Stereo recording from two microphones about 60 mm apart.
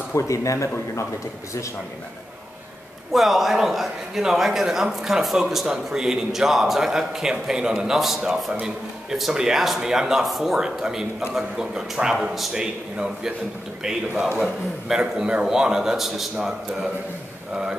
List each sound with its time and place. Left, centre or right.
0.1 s speech: left
3.1 s a man's voice: centre